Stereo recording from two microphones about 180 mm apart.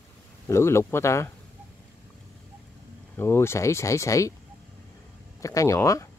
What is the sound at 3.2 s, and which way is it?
Speech, 15° left (ahead or behind).